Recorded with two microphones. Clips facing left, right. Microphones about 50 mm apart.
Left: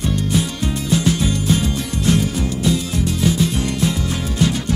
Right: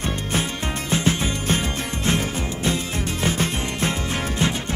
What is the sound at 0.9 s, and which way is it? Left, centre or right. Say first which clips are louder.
Music: left 4 dB; right.